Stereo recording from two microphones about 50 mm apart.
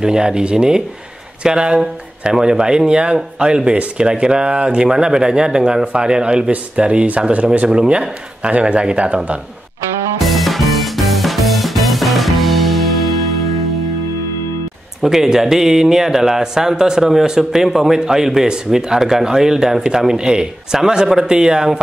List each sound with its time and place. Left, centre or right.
0.0 s speech: centre
8.5 s speech: right
10.1 s music: centre
15.0 s speech: centre